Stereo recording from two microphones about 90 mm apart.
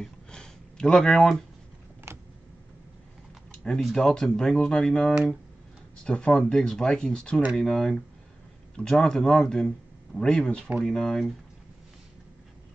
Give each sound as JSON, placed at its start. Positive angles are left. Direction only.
{"t": 0.0, "sound": "a sound", "side_deg": 10}
{"t": 2.1, "sound": "a sound", "side_deg": -30}
{"t": 3.5, "sound": "typing", "side_deg": 10}
{"t": 3.8, "sound": "speech", "side_deg": 5}
{"t": 5.1, "sound": "speech", "side_deg": -5}
{"t": 6.0, "sound": "a man's voice", "side_deg": 10}